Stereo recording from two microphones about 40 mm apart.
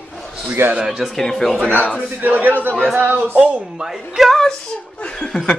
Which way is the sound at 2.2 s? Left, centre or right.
Right.